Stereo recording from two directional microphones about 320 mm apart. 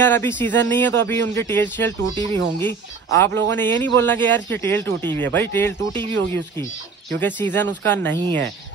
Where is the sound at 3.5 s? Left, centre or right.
Centre.